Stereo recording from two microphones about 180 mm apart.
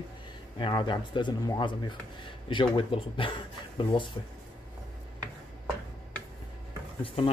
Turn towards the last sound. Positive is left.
turn(degrees=30)  # may be behind; listen again after turning